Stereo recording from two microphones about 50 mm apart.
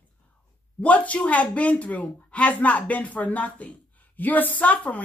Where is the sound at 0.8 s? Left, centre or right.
Left.